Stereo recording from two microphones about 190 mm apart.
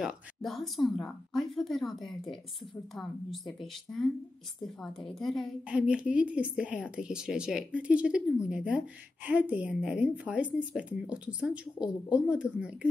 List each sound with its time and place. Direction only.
0.0 s a woman's voice: centre (ahead or behind)
5.2 s a woman's voice: centre (ahead or behind)